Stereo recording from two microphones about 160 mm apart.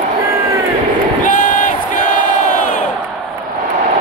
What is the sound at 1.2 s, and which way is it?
Battle cry, 55° left (ahead or behind).